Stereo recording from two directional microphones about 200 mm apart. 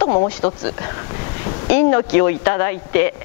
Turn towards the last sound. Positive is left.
turn(degrees=15)  # may be behind; listen again after turning